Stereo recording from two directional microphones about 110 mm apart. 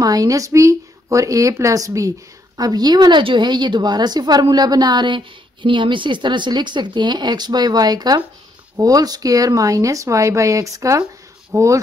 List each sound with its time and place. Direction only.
0.0 s speech: 35° right (ahead or behind)